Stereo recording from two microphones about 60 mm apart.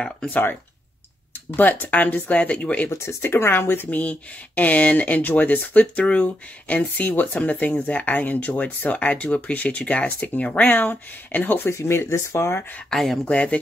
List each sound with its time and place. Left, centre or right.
0.3 s speech: left
1.6 s speech: left
2.9 s speech: left
11.7 s speech: left
12.9 s speech: centre
13.2 s speech: centre